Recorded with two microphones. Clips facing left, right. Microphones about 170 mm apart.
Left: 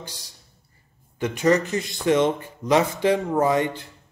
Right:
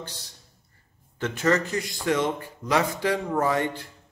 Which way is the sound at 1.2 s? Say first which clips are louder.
Left 4 dB; 15° left (ahead or behind).